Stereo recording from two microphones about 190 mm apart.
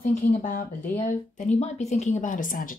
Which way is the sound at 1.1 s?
40° left (ahead or behind).